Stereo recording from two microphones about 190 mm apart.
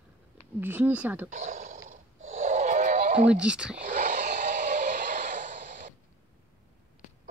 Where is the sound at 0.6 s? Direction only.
10° right (ahead or behind).